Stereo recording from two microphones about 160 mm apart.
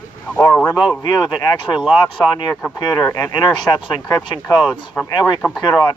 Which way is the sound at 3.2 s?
25° left (ahead or behind).